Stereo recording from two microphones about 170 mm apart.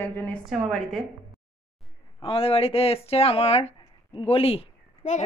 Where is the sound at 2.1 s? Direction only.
30° left (ahead or behind).